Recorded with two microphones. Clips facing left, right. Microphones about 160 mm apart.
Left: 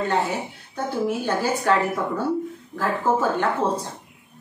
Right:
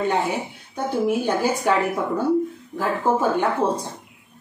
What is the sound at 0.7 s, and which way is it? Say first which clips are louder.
Speech: right 3 dB; 15° right (ahead or behind).